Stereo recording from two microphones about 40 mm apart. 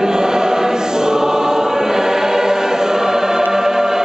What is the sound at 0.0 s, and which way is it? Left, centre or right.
Choir, centre.